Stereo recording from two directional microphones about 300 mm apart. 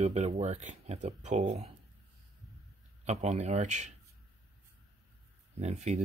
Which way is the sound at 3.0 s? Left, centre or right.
Right.